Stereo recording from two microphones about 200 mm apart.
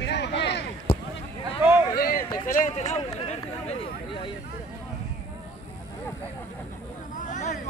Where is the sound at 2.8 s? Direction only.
30° left (ahead or behind).